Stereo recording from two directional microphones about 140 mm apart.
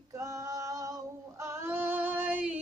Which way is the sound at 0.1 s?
25° right (ahead or behind).